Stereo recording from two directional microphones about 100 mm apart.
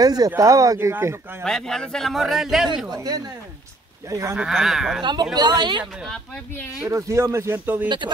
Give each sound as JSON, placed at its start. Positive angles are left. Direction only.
{"t": 0.0, "sound": "speech", "side_deg": -40}
{"t": 1.4, "sound": "a man's voice", "side_deg": 5}
{"t": 2.9, "sound": "speech", "side_deg": -40}
{"t": 4.4, "sound": "a man's voice", "side_deg": -5}
{"t": 5.0, "sound": "speech", "side_deg": -45}
{"t": 6.9, "sound": "speech", "side_deg": -30}